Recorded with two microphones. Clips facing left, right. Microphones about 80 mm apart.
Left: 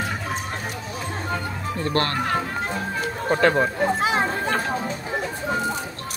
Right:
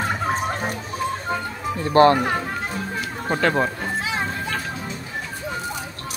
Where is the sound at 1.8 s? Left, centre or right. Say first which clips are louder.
Right 9 dB; centre.